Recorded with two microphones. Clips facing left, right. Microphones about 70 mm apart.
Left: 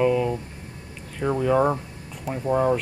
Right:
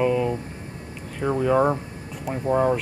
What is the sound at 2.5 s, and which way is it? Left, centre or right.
Speech, centre.